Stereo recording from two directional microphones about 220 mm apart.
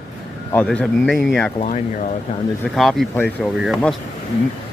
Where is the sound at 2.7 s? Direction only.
Centre (ahead or behind).